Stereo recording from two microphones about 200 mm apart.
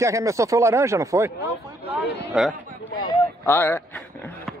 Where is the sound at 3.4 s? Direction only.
10° left (ahead or behind).